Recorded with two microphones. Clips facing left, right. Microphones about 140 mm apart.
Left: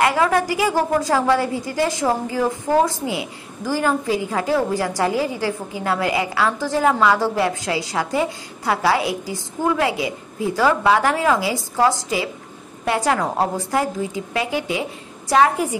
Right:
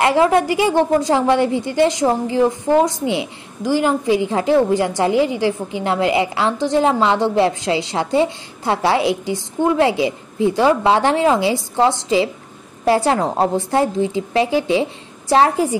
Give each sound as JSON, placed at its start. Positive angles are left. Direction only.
{"t": 0.0, "sound": "a woman's voice", "side_deg": -25}